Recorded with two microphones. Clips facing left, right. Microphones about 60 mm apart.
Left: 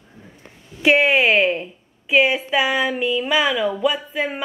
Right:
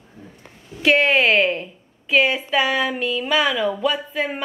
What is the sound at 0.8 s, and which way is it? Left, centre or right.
A woman's voice, centre.